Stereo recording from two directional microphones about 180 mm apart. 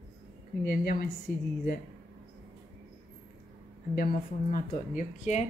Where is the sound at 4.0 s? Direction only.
55° left (ahead or behind).